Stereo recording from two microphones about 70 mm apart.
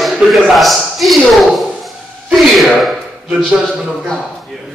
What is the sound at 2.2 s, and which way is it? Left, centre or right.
Speech, centre.